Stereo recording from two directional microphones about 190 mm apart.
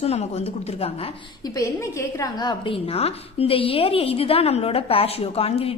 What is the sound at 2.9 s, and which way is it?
A woman's voice, 30° left (ahead or behind).